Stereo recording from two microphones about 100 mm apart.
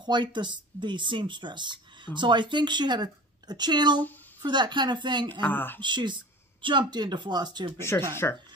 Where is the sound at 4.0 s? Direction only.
20° left (ahead or behind).